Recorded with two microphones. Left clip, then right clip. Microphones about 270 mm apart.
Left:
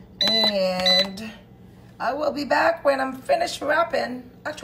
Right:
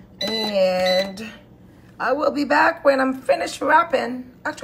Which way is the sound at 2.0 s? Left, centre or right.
Centre.